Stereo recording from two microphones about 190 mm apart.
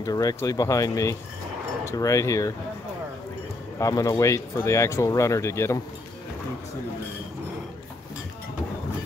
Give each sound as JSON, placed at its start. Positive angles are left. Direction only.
{"t": 0.0, "sound": "speech", "side_deg": 20}
{"t": 3.8, "sound": "speech", "side_deg": 15}